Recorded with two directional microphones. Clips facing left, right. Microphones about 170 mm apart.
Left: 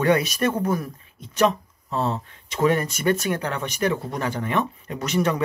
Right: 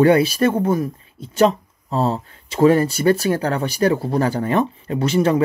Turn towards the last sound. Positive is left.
turn(degrees=-30)  # may be behind; listen again after turning